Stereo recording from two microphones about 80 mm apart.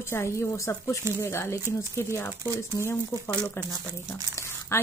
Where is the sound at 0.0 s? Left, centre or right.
Left.